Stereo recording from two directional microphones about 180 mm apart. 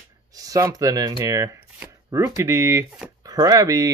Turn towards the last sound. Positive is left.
turn(degrees=-20)  # may be behind; listen again after turning